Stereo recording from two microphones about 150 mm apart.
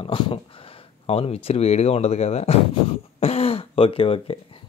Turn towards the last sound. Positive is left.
turn(degrees=40)  # may be behind; listen again after turning